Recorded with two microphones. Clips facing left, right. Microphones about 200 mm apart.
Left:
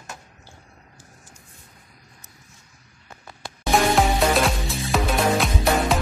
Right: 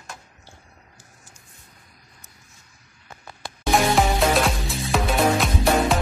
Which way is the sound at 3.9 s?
Centre (ahead or behind).